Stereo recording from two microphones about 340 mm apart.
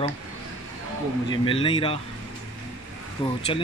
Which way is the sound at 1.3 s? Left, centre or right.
Centre.